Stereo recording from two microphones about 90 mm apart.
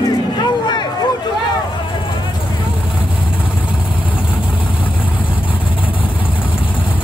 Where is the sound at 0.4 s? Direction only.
55° left (ahead or behind).